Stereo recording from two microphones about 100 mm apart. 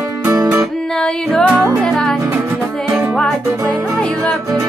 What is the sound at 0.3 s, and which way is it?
Music, 35° right (ahead or behind).